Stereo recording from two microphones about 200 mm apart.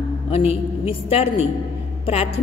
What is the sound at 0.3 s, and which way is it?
A woman's voice, 30° left (ahead or behind).